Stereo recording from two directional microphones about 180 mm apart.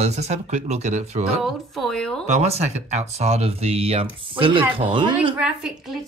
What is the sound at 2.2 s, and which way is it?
Speech, 35° right (ahead or behind).